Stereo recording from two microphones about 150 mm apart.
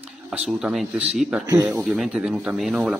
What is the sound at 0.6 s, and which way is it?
Speech, 5° right (ahead or behind).